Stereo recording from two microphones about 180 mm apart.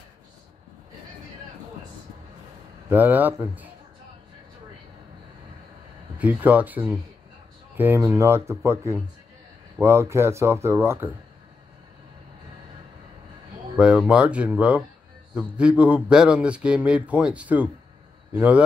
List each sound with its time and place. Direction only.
2.9 s speech: 10° right (ahead or behind)
6.1 s speech: 10° right (ahead or behind)
13.7 s a man's voice: 5° right (ahead or behind)